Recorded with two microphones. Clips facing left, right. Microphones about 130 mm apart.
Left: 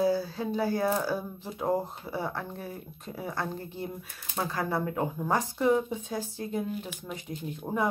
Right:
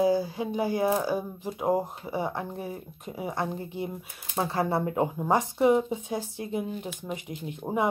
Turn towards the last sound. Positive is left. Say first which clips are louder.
# right 2 dB
turn(degrees=-20)  # may be behind; listen again after turning